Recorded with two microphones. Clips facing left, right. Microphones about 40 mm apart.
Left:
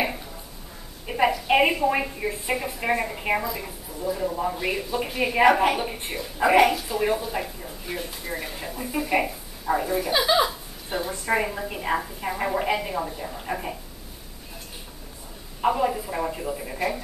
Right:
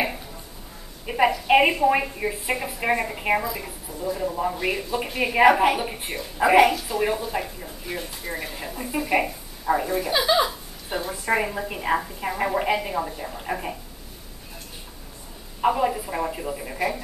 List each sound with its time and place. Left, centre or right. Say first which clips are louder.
0.0 s a sound: even; centre
1.0 s a woman's voice: right 2 dB; centre
15.6 s a woman's voice: right 1 dB; centre